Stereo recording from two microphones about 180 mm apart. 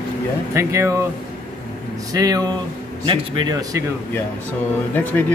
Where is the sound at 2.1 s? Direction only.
20° right (ahead or behind).